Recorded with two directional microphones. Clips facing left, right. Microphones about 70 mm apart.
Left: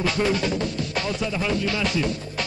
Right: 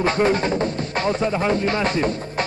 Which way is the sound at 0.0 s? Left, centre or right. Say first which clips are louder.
Right 4 dB; right.